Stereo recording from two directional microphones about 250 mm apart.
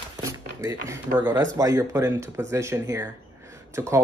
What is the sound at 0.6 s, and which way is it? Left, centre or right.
Speech, centre.